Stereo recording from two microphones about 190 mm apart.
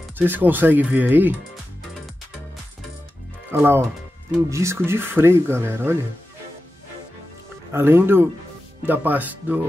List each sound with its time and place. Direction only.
0.2 s speech: 10° right (ahead or behind)
3.5 s speech: 10° right (ahead or behind)
7.7 s speech: 10° right (ahead or behind)